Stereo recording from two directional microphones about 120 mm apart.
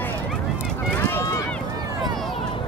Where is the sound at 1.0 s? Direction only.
25° left (ahead or behind).